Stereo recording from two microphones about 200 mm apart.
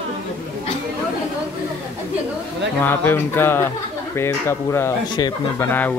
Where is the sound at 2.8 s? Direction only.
10° left (ahead or behind).